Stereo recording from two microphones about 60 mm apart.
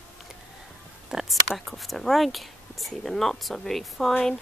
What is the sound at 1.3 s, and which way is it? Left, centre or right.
Speech, centre.